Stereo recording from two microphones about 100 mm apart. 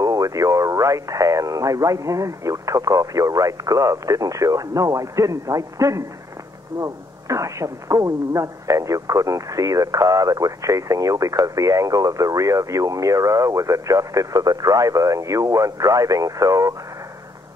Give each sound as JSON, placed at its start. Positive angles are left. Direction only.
{"t": 0.0, "sound": "speech", "side_deg": -35}